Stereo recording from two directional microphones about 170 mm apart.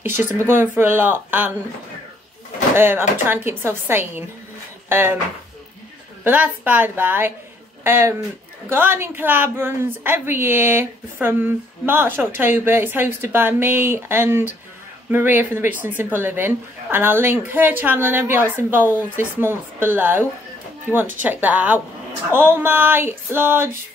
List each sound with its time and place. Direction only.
0.0 s a woman's voice: 10° right (ahead or behind)
2.7 s a woman's voice: 10° right (ahead or behind)
6.2 s a woman's voice: 10° right (ahead or behind)